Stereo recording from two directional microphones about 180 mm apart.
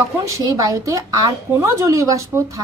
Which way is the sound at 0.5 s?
20° right (ahead or behind).